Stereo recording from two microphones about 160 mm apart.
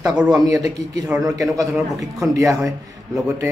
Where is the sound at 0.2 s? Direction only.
5° right (ahead or behind).